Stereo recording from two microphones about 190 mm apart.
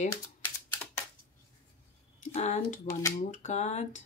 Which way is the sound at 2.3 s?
40° left (ahead or behind).